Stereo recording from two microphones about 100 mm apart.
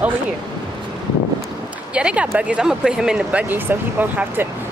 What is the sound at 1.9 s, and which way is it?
Speech, 10° right (ahead or behind).